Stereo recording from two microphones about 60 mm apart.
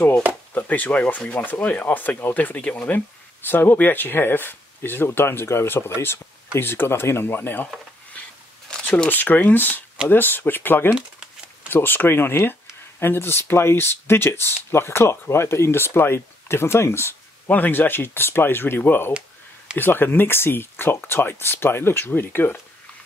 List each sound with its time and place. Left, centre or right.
0.6 s speech: left
8.8 s speech: left
17.5 s speech: left